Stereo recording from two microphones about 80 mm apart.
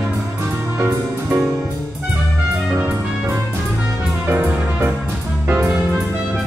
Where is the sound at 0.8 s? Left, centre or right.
Right.